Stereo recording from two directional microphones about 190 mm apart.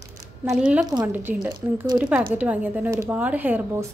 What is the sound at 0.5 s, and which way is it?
A woman's voice, 5° right (ahead or behind).